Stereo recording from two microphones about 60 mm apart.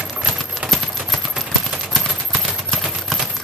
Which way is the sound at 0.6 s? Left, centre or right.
Centre.